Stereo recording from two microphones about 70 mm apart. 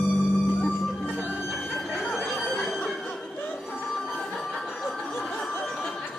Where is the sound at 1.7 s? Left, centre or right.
Centre.